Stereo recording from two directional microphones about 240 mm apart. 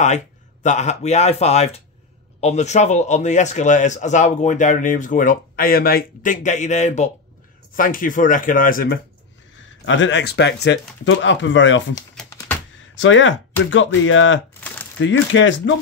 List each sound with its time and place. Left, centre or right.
0.0 s a man's voice: left
9.8 s speech: left
12.2 s typing: centre
12.9 s speech: left